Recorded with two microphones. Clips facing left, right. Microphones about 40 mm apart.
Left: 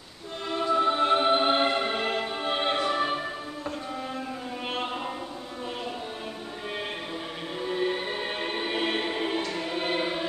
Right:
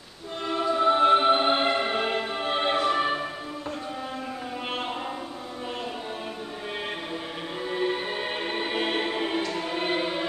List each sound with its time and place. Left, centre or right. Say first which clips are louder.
0.5 s music: right 2 dB; centre
7.6 s music: even; centre